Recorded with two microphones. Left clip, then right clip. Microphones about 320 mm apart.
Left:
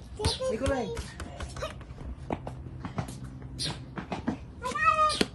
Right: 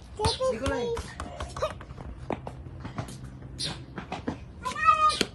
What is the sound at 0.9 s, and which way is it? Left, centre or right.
Music, right.